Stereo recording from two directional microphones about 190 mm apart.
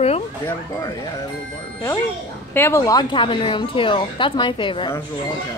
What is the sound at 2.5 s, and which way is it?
A woman's voice, 15° left (ahead or behind).